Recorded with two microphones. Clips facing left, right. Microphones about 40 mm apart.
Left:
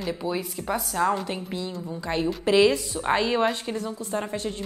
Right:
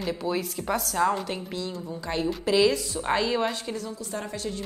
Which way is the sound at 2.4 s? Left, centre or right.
Left.